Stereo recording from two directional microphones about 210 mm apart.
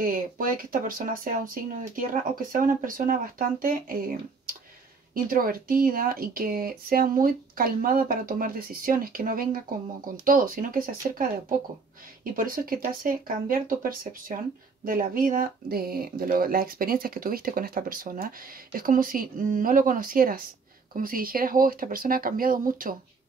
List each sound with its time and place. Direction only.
0.0 s speech: 40° right (ahead or behind)